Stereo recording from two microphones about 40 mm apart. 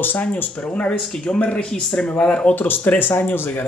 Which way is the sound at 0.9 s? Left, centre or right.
Left.